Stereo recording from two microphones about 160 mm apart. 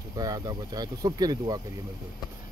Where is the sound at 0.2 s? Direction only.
25° right (ahead or behind).